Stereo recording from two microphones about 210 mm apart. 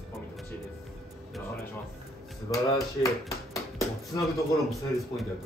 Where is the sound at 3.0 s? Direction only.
15° left (ahead or behind).